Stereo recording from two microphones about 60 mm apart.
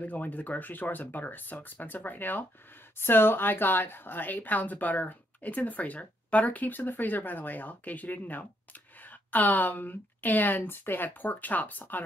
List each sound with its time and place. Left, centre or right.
0.0 s speech: left